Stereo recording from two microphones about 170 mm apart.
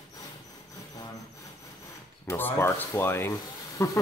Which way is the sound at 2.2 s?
15° left (ahead or behind).